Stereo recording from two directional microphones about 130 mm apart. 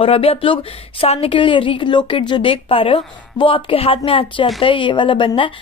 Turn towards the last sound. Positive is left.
turn(degrees=40)  # may be behind; listen again after turning